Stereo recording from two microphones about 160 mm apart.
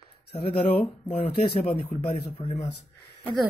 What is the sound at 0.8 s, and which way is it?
Speech, 40° left (ahead or behind).